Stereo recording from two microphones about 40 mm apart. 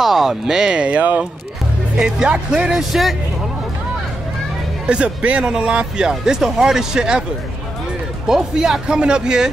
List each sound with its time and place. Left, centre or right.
0.0 s speech: centre; by 1.2 s right
2.0 s speech: centre
2.9 s speech: centre
4.8 s speech: right
8.3 s speech: centre